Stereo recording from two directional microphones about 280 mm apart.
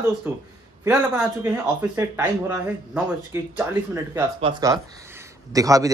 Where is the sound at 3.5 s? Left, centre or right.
Centre.